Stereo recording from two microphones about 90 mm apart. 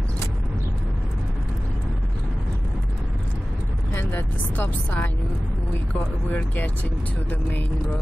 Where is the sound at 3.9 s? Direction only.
25° left (ahead or behind).